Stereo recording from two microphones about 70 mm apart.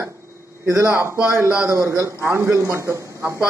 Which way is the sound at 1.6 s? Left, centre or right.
Right.